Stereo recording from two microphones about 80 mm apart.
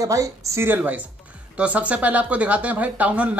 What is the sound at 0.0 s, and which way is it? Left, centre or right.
Speech, right.